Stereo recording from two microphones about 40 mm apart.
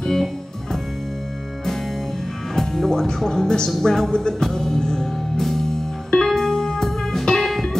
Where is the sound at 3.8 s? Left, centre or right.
Centre.